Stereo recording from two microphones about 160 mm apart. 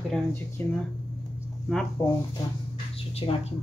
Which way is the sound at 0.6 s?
10° left (ahead or behind).